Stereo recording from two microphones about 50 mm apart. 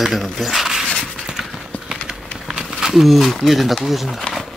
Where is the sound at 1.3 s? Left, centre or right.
Centre.